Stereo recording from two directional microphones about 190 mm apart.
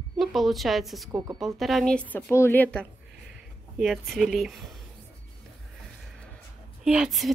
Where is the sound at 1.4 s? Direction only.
Centre (ahead or behind).